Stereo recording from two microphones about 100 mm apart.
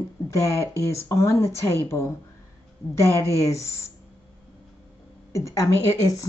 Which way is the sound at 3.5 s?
30° left (ahead or behind).